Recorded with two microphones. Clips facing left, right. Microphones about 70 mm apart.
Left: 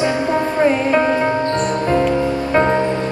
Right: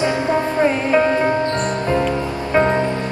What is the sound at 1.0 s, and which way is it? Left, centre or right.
Music, centre.